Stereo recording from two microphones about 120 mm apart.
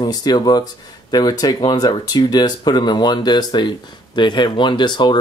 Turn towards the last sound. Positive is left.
turn(degrees=40)  # may be behind; listen again after turning